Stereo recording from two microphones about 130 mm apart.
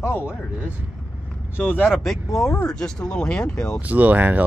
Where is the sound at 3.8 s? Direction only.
10° right (ahead or behind).